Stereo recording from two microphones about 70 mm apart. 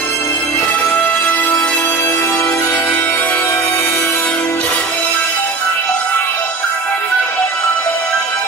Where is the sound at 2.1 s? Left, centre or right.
Left.